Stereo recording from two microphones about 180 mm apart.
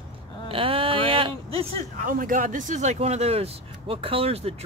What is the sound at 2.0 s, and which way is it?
Speech, 50° right (ahead or behind).